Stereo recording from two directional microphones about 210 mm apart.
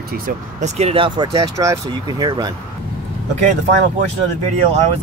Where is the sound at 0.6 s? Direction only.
30° right (ahead or behind).